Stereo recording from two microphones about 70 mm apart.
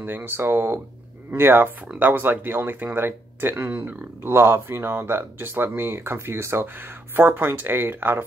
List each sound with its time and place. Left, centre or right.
0.0 s speech: right